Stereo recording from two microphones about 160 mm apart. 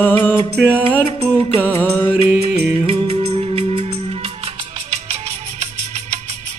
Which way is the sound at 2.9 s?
40° right (ahead or behind).